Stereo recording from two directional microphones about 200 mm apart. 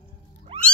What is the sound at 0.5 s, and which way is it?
Cat, 25° right (ahead or behind).